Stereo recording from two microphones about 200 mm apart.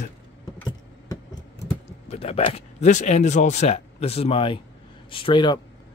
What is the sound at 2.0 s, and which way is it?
Speech, 30° left (ahead or behind).